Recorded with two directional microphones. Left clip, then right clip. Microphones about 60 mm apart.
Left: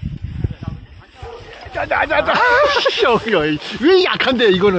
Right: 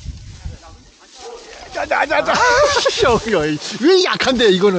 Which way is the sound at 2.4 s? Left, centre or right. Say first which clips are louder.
Even; centre.